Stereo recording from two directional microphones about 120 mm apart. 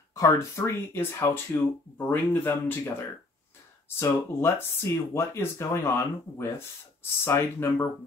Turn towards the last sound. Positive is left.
turn(degrees=20)  # may be behind; listen again after turning